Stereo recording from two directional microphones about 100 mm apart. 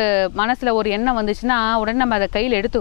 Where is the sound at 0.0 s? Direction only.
15° left (ahead or behind).